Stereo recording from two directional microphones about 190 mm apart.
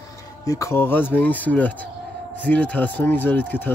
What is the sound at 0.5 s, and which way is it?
Speech, 15° left (ahead or behind).